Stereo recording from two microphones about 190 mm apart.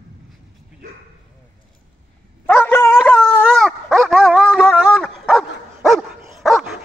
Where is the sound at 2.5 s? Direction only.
10° left (ahead or behind).